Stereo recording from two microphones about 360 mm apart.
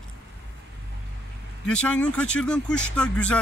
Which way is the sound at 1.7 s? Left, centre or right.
Centre.